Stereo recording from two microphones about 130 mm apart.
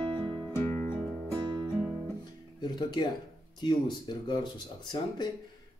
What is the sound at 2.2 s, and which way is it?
Music, 35° left (ahead or behind).